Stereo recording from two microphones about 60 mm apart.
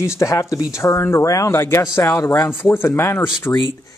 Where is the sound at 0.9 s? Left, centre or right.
Left.